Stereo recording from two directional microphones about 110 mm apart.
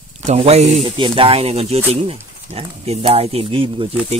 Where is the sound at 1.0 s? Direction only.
55° right (ahead or behind).